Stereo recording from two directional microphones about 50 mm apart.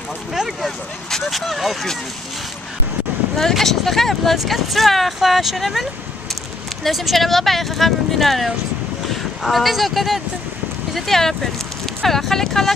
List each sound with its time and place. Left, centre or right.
0.3 s speech: centre
3.3 s speech: centre